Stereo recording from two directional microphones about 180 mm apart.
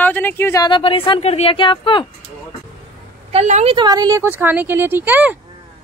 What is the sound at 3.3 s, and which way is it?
Speech, 40° right (ahead or behind).